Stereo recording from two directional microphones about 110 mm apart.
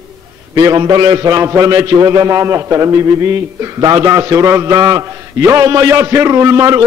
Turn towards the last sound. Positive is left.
turn(degrees=-25)  # may be behind; listen again after turning